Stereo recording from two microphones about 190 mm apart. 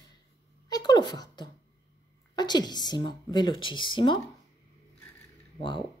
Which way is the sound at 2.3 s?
20° left (ahead or behind).